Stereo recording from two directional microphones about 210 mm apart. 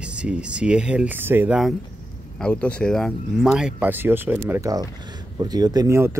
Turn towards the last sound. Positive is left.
turn(degrees=-10)  # may be behind; listen again after turning